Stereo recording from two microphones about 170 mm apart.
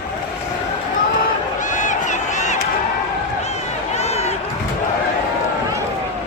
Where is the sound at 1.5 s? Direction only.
45° left (ahead or behind).